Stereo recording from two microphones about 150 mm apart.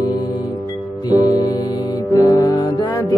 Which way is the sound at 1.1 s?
25° left (ahead or behind).